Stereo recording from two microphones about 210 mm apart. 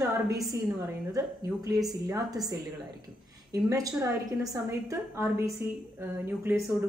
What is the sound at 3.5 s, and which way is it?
Speech, 15° right (ahead or behind).